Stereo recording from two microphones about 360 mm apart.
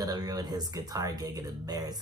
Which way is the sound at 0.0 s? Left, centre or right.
Centre.